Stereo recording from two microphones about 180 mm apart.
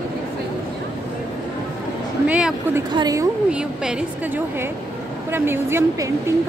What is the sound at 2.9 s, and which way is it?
Speech, 20° right (ahead or behind).